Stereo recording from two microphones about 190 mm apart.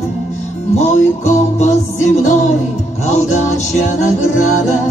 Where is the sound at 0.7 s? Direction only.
35° left (ahead or behind).